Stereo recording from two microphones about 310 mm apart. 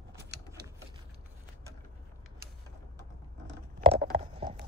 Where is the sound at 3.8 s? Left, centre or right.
Right.